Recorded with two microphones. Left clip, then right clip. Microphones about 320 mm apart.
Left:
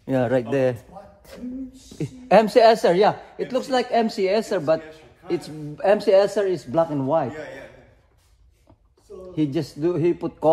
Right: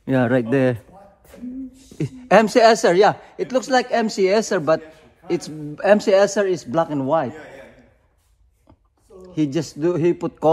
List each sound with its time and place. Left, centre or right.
0.0 s a man's voice: right
2.0 s a man's voice: right
9.3 s a man's voice: right